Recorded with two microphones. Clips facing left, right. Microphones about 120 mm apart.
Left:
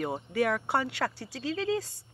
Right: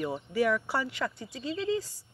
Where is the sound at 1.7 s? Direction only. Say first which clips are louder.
Even; 65° left (ahead or behind).